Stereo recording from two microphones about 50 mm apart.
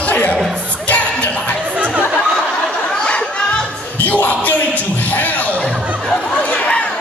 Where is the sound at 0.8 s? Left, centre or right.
Left.